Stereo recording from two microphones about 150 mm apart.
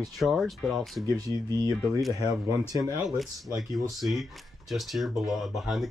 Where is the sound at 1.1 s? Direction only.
25° right (ahead or behind).